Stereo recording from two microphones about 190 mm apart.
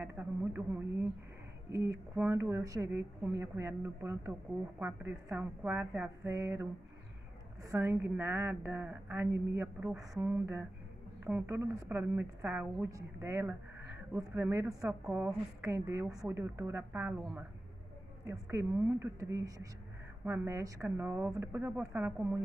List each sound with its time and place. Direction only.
0.0 s a woman's voice: 10° right (ahead or behind)
1.7 s a woman's voice: 15° right (ahead or behind)
7.7 s a woman's voice: 15° right (ahead or behind)